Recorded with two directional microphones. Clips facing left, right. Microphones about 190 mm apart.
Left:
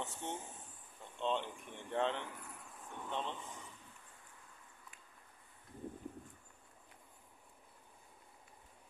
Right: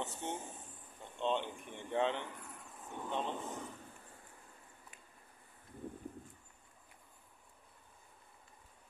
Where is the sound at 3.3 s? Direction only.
45° right (ahead or behind).